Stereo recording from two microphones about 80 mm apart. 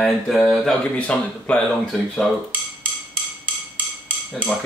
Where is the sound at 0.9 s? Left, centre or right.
Centre.